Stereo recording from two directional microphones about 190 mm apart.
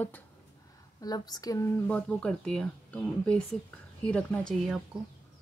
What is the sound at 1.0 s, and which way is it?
A woman's voice, 20° left (ahead or behind).